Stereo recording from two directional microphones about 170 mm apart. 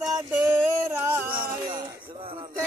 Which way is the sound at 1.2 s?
60° right (ahead or behind).